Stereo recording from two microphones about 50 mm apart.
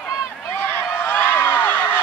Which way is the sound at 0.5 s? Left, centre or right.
Left.